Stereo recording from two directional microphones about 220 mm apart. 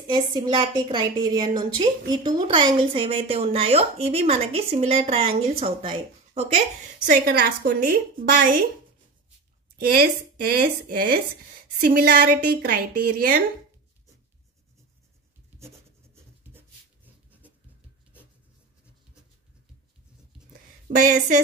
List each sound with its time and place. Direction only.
0.0 s a woman's voice: 20° right (ahead or behind); by 8.5 s 40° right (ahead or behind)
9.8 s a woman's voice: 45° right (ahead or behind)
17.0 s writing: 5° right (ahead or behind)
20.9 s a woman's voice: 35° right (ahead or behind)